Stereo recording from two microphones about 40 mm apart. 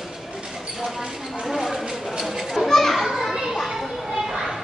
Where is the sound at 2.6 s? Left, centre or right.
Centre.